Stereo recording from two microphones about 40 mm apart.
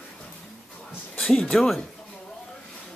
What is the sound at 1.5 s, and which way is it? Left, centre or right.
Speech, centre.